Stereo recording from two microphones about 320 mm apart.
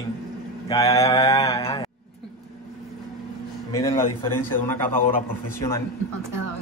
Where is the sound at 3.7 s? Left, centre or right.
Centre.